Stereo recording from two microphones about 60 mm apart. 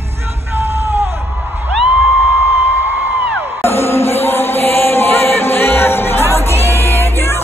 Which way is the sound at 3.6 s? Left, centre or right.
Left.